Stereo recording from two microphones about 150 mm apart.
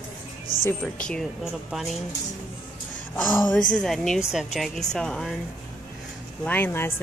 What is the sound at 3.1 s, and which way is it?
Speech, 10° left (ahead or behind).